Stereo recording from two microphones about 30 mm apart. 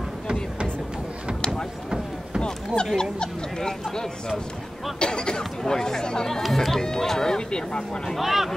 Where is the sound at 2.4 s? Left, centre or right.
Left.